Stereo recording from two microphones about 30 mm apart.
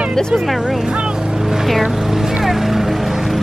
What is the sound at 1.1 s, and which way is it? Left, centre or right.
Vehicle, centre.